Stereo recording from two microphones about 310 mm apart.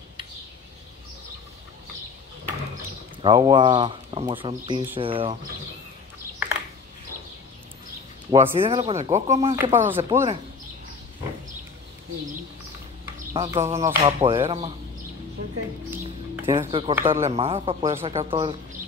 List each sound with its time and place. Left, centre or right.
3.2 s speech: centre
8.3 s speech: centre
9.6 s speech: centre
13.3 s speech: centre
15.9 s speech: centre